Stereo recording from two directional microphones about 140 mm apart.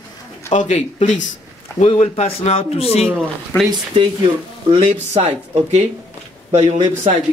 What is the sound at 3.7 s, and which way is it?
Speech, 35° right (ahead or behind).